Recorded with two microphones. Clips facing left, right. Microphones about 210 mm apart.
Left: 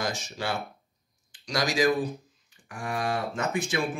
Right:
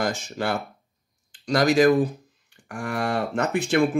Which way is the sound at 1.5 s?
55° right (ahead or behind).